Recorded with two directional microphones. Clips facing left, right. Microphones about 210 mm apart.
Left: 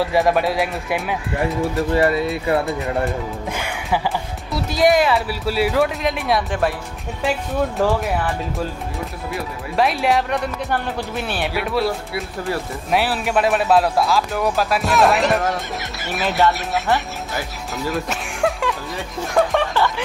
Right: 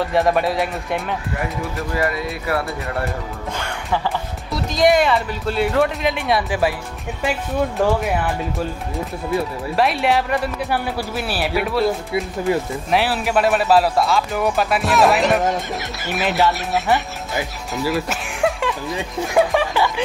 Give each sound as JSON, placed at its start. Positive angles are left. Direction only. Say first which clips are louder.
{"t": 0.0, "sound": "speech", "louder": "even", "side_deg": 0}
{"t": 1.8, "sound": "speech", "louder": "left 5 dB", "side_deg": 30}
{"t": 3.5, "sound": "music", "louder": "even", "side_deg": 10}
{"t": 4.6, "sound": "speech", "louder": "even", "side_deg": 5}
{"t": 9.8, "sound": "speech", "louder": "even", "side_deg": 0}
{"t": 12.1, "sound": "speech", "louder": "right 5 dB", "side_deg": -20}
{"t": 12.9, "sound": "speech", "louder": "right 1 dB", "side_deg": 0}